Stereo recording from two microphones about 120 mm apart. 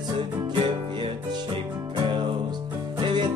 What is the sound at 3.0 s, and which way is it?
Music, 40° right (ahead or behind).